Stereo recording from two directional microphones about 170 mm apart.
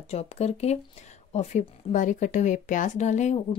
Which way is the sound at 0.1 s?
40° left (ahead or behind).